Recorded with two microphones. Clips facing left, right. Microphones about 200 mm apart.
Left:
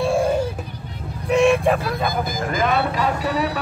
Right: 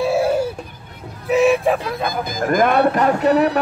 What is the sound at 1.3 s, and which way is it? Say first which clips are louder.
Speech: right 1 dB; 5° right (ahead or behind).